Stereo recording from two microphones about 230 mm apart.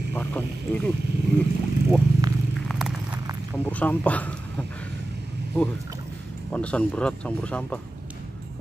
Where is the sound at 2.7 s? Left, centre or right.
Centre.